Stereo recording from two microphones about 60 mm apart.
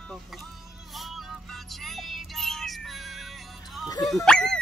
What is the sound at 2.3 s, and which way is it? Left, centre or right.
Speech, centre.